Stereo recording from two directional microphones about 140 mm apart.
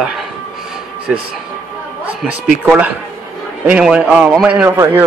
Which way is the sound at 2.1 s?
10° right (ahead or behind).